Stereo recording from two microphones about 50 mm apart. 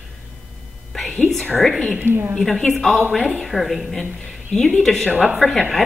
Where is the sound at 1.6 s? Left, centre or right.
Centre.